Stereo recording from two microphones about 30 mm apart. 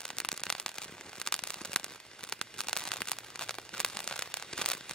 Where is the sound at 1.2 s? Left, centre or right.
Left.